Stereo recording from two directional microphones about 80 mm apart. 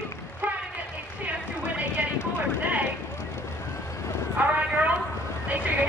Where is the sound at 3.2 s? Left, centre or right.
Left.